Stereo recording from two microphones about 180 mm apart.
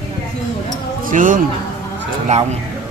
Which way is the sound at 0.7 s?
45° right (ahead or behind).